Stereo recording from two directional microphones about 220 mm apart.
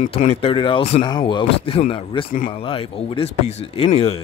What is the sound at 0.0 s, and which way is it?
Speech, 30° left (ahead or behind).